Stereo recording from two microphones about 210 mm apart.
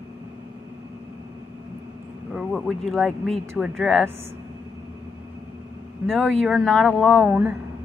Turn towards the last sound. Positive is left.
turn(degrees=-10)  # may be behind; listen again after turning